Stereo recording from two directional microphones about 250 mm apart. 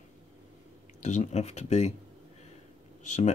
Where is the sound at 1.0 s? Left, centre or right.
Left.